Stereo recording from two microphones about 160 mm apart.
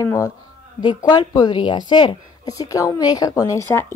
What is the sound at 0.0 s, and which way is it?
A woman's voice, 20° left (ahead or behind).